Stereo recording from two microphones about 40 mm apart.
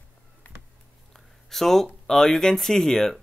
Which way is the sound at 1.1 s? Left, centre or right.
Centre.